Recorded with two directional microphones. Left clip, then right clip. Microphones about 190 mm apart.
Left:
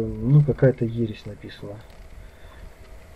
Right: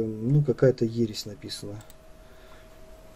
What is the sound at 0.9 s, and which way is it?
Speech, 45° right (ahead or behind).